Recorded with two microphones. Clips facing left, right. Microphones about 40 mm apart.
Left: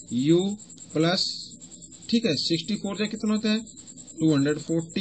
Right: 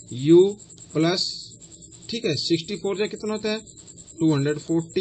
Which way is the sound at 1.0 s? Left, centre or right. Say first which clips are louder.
Right 2 dB; centre.